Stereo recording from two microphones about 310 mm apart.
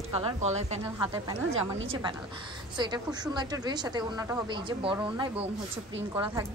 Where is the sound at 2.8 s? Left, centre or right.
Centre.